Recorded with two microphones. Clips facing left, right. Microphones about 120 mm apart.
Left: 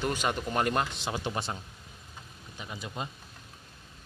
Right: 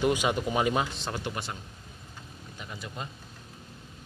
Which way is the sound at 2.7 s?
20° left (ahead or behind).